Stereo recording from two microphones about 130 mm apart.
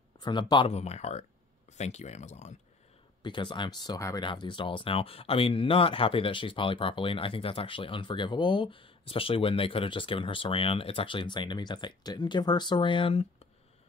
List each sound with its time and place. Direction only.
0.2 s speech: 35° left (ahead or behind)
0.7 s speech: 55° left (ahead or behind)
3.2 s speech: 35° left (ahead or behind)
4.3 s speech: 40° left (ahead or behind)